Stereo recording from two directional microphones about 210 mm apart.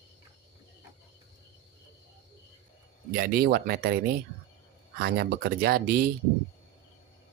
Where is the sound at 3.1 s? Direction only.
45° right (ahead or behind).